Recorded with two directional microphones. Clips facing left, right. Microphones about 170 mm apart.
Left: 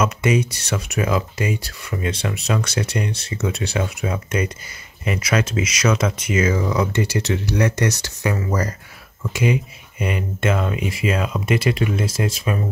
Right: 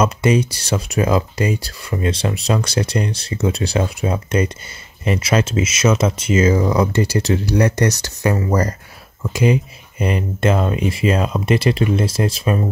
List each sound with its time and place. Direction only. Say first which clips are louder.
0.0 s speech: right 3 dB; 35° right (ahead or behind)